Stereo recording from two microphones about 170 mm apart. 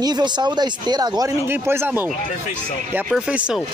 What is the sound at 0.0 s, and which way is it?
Speech, 25° right (ahead or behind).